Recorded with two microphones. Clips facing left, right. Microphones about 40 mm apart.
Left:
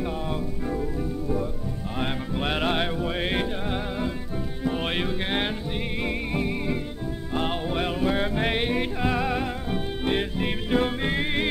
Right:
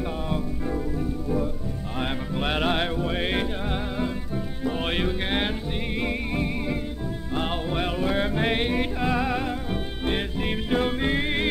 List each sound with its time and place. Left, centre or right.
0.0 s music: centre